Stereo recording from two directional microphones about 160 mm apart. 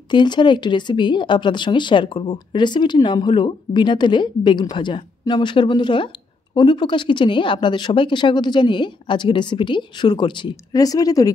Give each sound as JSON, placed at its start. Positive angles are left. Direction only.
{"t": 0.1, "sound": "speech", "side_deg": 30}